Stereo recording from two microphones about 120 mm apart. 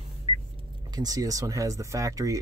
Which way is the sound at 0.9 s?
30° right (ahead or behind).